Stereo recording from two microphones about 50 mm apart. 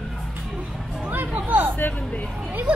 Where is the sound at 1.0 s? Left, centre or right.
Right.